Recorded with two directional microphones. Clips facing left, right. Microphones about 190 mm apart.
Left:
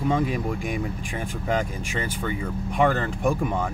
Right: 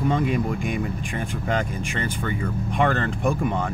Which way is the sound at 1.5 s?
5° left (ahead or behind).